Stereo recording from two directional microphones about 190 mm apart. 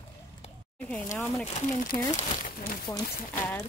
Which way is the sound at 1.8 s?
45° left (ahead or behind).